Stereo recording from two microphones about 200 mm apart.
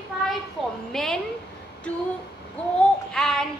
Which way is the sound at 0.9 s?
Centre (ahead or behind).